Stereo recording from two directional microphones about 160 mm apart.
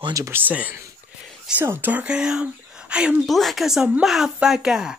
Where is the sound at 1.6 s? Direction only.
15° right (ahead or behind).